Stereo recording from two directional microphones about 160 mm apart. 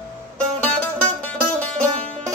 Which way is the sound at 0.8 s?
10° left (ahead or behind).